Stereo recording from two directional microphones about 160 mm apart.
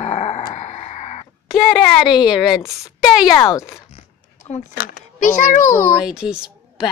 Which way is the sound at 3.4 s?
20° left (ahead or behind).